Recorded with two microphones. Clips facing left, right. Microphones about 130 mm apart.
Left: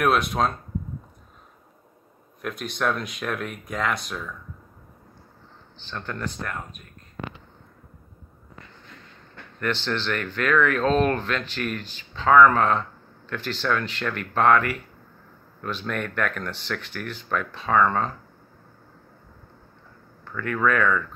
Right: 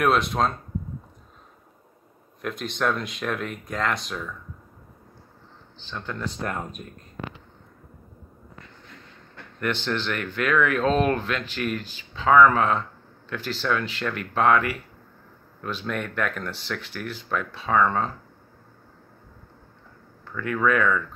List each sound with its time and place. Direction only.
0.0 s speech: 5° left (ahead or behind)
2.4 s speech: 5° left (ahead or behind)
5.9 s speech: centre (ahead or behind)
6.4 s speech: 25° right (ahead or behind)
9.6 s speech: 10° right (ahead or behind)
20.2 s speech: 5° right (ahead or behind)